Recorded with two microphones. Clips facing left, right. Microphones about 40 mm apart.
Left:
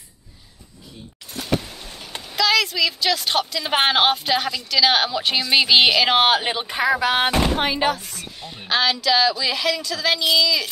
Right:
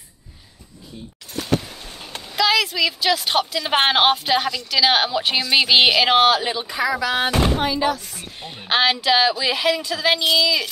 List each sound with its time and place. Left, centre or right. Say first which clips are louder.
2.3 s speech: right 1 dB; centre
6.2 s speech: right 1 dB; left
8.2 s speech: right 1 dB; right